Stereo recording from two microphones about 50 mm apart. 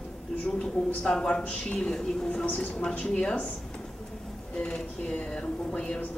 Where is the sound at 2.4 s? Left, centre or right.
Left.